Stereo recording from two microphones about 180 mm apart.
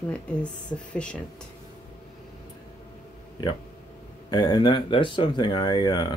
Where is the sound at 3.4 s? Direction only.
25° left (ahead or behind).